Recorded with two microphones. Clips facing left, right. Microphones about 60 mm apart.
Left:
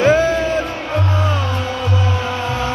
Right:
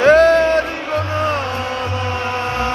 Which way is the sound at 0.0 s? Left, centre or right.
Right.